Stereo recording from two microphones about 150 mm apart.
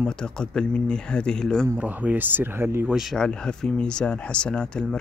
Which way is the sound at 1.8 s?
10° right (ahead or behind).